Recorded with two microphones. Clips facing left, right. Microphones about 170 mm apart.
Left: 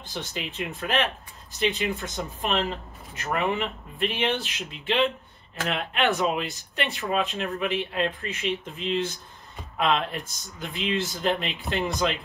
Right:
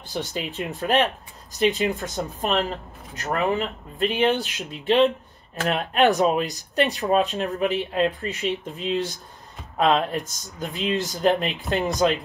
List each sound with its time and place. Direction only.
0.1 s speech: 35° right (ahead or behind)
5.7 s speech: 40° right (ahead or behind)